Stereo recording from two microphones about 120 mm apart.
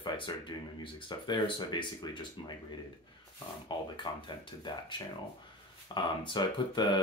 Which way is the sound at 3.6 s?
40° left (ahead or behind).